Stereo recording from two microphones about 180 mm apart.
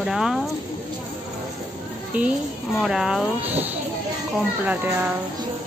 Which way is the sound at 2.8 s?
Centre (ahead or behind).